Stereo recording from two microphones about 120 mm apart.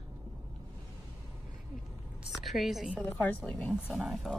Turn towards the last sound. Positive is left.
turn(degrees=-5)  # may be behind; listen again after turning